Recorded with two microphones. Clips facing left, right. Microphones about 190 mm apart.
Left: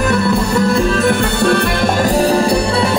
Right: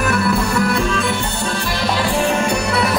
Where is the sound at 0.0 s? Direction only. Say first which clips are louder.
Left 3 dB; 25° left (ahead or behind).